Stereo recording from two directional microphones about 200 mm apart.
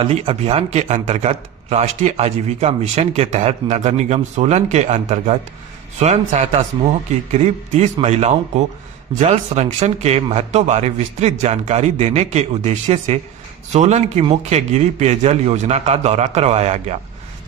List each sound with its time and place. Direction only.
0.0 s a man's voice: 30° right (ahead or behind)